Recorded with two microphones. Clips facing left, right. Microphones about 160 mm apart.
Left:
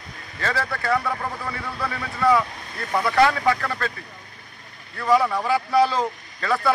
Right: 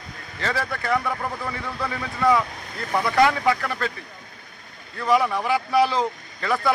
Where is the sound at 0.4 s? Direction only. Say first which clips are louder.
Left 1 dB; 15° right (ahead or behind).